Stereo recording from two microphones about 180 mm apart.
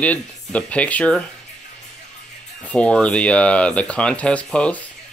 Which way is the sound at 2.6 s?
5° left (ahead or behind).